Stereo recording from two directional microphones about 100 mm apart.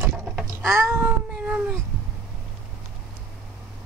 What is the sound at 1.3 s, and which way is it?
Cat, 15° right (ahead or behind).